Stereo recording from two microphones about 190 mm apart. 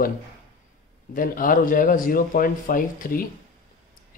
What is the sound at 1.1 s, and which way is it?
Speech, 45° left (ahead or behind).